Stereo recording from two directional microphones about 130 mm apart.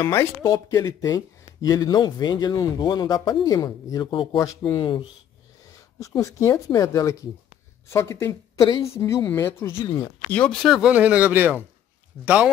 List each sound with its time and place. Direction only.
0.0 s speech: 20° left (ahead or behind)
4.1 s speech: 40° left (ahead or behind)
4.4 s speech: 25° left (ahead or behind)
4.7 s speech: 40° left (ahead or behind)
5.9 s speech: 25° left (ahead or behind)
10.3 s speech: 5° left (ahead or behind); by 11.6 s 15° right (ahead or behind)